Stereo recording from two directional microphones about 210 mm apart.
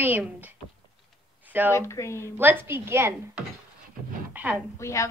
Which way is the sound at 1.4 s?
10° right (ahead or behind).